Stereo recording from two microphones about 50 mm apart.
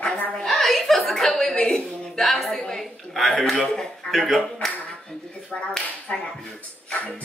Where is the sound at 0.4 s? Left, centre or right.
Centre.